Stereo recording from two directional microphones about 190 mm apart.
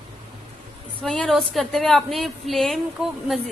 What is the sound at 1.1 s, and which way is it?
A woman's voice, 5° left (ahead or behind).